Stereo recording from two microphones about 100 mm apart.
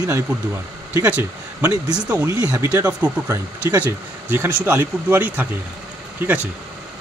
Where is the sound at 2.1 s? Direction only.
20° right (ahead or behind).